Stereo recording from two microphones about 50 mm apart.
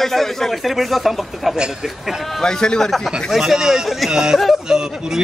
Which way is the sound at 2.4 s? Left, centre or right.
Centre.